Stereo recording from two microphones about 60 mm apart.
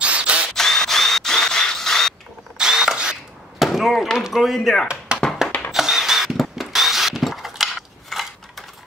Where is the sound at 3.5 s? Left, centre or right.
Centre.